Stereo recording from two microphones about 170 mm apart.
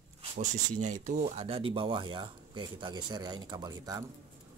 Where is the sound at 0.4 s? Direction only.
45° right (ahead or behind); by 4.0 s 20° right (ahead or behind).